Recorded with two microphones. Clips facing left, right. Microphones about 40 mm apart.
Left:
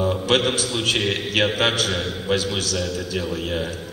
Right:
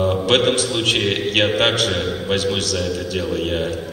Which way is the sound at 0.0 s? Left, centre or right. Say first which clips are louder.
Right 3 dB; right.